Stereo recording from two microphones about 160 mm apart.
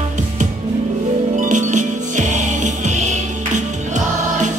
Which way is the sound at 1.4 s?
50° right (ahead or behind).